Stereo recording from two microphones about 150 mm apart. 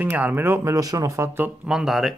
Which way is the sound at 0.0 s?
10° right (ahead or behind).